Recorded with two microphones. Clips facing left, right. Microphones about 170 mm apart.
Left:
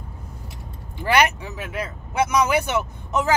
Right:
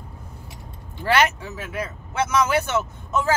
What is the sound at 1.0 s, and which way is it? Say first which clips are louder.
Speech: left 1 dB; 15° left (ahead or behind).